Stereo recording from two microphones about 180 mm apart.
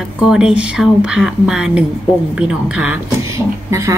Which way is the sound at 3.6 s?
15° right (ahead or behind).